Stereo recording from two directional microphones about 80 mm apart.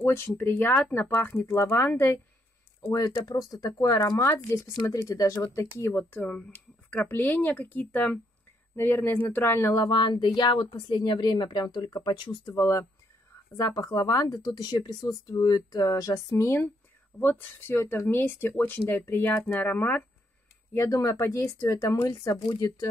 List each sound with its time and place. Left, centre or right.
0.0 s speech: left
2.8 s speech: left
5.8 s speech: left
6.2 s speech: centre
7.1 s speech: left
9.8 s speech: left
11.1 s speech: left
12.5 s speech: left
14.2 s speech: left
16.3 s speech: left
20.7 s speech: left